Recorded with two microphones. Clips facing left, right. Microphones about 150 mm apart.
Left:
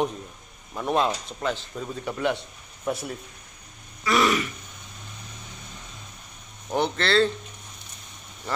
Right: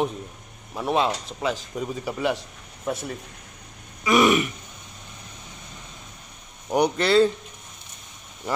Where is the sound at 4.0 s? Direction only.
15° right (ahead or behind).